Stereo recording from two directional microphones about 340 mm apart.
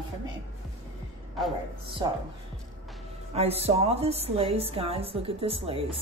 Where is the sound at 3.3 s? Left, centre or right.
Centre.